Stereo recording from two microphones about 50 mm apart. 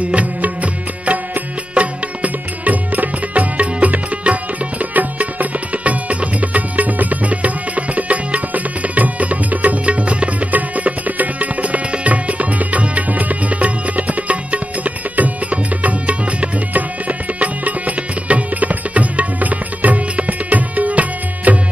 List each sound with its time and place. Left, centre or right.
0.0 s music: right